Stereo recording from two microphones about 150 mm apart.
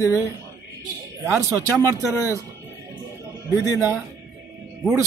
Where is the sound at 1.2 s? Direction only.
20° right (ahead or behind).